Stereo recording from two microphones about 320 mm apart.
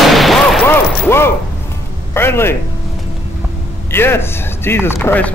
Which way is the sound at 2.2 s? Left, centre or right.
Centre.